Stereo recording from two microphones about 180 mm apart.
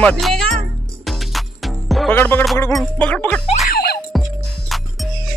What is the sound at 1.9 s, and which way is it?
Music, centre (ahead or behind).